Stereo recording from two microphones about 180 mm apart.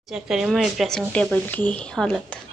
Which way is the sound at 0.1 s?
Centre (ahead or behind).